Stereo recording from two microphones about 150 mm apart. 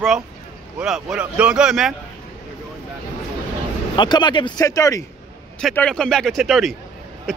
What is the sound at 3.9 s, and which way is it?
Speech, 30° left (ahead or behind).